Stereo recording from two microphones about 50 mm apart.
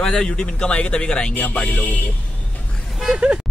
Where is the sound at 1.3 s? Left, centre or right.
Left.